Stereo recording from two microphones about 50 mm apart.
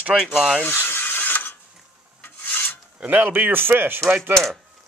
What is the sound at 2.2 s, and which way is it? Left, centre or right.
Filing, left.